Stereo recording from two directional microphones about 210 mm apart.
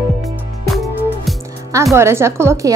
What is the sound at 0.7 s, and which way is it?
Music, centre (ahead or behind).